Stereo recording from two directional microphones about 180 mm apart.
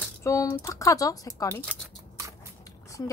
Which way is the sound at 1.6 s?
Centre (ahead or behind).